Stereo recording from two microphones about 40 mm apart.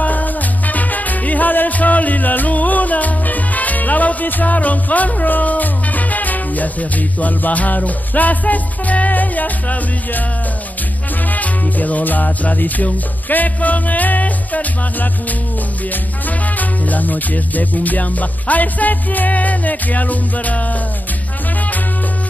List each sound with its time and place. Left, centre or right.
0.0 s music: left
11.3 s music: left